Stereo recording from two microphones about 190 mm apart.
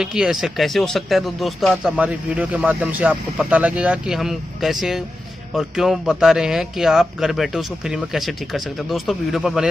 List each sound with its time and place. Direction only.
0.0 s speech: 5° right (ahead or behind)